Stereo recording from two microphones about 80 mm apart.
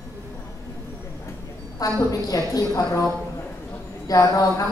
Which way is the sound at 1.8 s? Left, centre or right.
Left.